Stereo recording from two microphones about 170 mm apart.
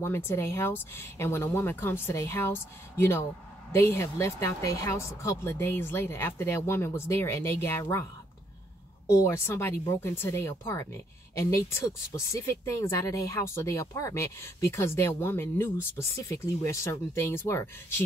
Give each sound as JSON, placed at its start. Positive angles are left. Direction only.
{"t": 0.0, "sound": "speech", "side_deg": 15}